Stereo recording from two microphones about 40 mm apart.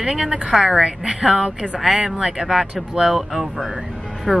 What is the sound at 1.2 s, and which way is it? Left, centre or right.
Speech, centre.